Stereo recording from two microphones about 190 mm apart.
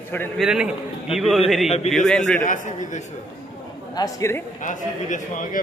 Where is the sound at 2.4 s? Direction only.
40° left (ahead or behind).